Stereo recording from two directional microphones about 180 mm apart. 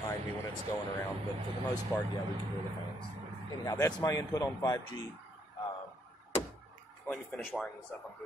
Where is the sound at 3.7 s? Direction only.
20° left (ahead or behind).